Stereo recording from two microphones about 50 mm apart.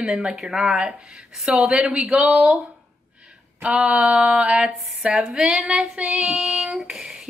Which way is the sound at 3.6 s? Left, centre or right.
Right.